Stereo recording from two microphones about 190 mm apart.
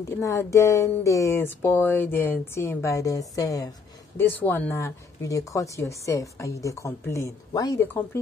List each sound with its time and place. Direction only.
0.2 s speech: 15° left (ahead or behind)